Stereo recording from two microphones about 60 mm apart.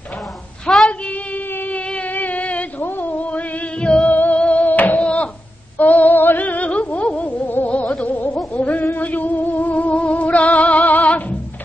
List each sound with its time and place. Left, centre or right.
0.7 s female singing: centre
1.0 s female singing: left
1.8 s a sound: left
2.8 s music: left
4.1 s music: left
4.4 s a sound: left
5.8 s female singing: left
8.5 s music: left